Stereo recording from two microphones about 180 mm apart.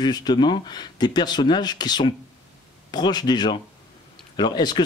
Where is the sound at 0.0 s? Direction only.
25° left (ahead or behind).